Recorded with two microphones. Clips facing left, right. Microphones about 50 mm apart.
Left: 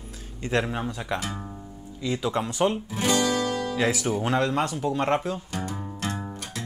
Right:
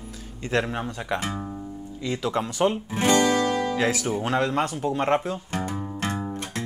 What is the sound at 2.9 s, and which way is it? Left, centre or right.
Music, right.